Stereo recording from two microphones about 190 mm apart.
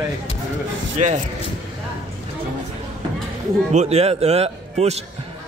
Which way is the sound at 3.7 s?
35° right (ahead or behind).